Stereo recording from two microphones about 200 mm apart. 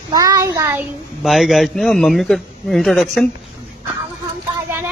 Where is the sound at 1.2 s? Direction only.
Centre (ahead or behind).